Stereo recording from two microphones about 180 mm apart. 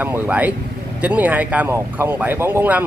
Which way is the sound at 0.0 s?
10° right (ahead or behind).